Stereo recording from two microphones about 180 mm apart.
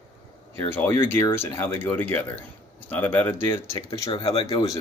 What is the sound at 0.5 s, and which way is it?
Speech, 10° left (ahead or behind).